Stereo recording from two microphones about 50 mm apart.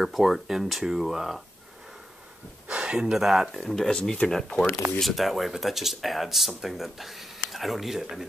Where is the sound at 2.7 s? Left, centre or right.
Centre.